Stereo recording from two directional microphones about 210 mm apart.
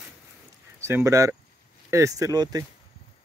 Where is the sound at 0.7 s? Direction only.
15° right (ahead or behind).